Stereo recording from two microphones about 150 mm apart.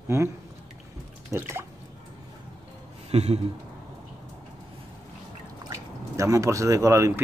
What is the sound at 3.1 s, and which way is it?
Speech, 45° right (ahead or behind).